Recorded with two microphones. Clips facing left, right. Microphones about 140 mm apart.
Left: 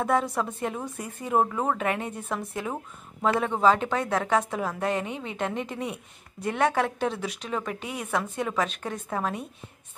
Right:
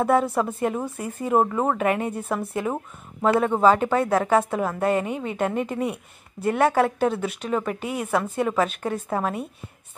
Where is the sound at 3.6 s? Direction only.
5° right (ahead or behind).